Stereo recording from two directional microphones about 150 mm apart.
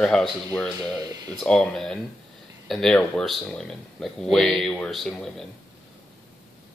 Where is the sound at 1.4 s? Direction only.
5° left (ahead or behind).